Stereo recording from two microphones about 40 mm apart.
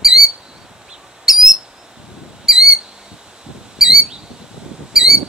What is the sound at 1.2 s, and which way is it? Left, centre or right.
Owl, centre.